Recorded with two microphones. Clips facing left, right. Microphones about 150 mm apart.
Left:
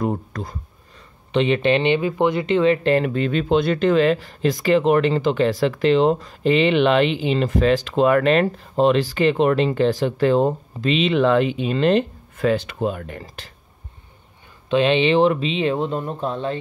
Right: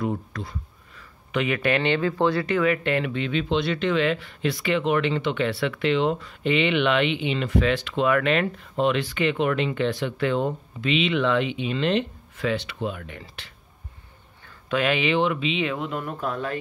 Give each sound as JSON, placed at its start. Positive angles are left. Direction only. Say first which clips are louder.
{"t": 0.0, "sound": "speech", "louder": "left 4 dB", "side_deg": 45}
{"t": 0.9, "sound": "speech", "louder": "left 6 dB", "side_deg": 30}
{"t": 14.7, "sound": "speech", "louder": "left 6 dB", "side_deg": 25}